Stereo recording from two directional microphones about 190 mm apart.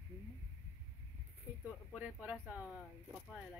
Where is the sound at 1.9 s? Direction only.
5° right (ahead or behind).